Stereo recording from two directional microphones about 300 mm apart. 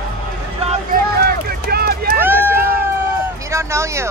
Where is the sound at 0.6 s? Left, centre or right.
Right.